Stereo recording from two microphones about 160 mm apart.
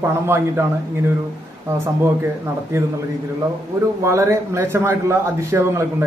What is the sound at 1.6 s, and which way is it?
Speech, 20° right (ahead or behind).